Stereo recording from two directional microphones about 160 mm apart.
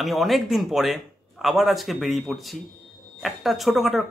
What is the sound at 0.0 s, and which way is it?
Speech, centre (ahead or behind).